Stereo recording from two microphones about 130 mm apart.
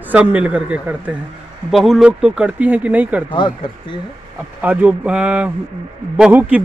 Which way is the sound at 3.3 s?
40° left (ahead or behind).